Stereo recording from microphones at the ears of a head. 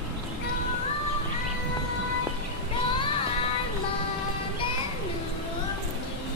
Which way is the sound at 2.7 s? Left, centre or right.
Left.